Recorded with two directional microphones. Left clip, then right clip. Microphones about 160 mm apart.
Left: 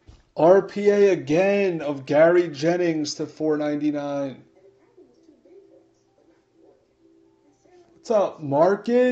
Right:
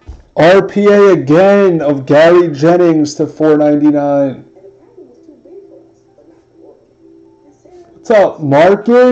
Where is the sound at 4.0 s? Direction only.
20° left (ahead or behind).